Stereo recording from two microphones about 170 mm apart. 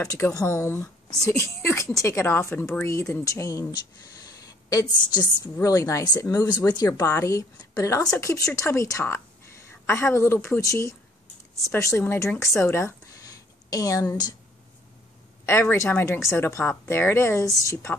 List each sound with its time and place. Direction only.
0.0 s speech: 20° left (ahead or behind)
4.3 s a sound: 20° left (ahead or behind)
5.1 s a woman's voice: 20° left (ahead or behind)
15.4 s speech: 15° left (ahead or behind)